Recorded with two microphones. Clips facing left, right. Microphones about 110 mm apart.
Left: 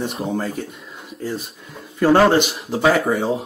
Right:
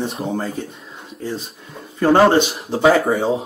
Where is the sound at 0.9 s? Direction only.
25° right (ahead or behind).